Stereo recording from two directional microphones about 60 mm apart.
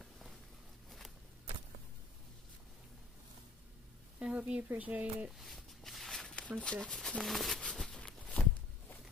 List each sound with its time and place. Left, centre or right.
0.8 s walk: centre
4.2 s a sound: centre
4.7 s speech: right
5.4 s walk: centre
6.3 s speech: centre
7.7 s a sound: centre